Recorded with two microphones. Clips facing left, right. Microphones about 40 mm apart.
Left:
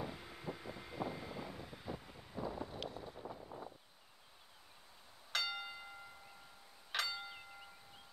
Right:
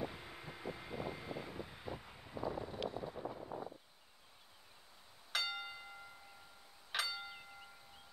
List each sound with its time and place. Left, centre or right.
0.0 s vehicle: centre
3.0 s vehicle: centre
5.3 s music: centre
6.9 s a sound: centre